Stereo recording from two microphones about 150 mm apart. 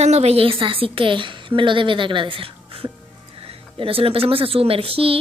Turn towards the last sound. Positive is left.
turn(degrees=-40)  # may be behind; listen again after turning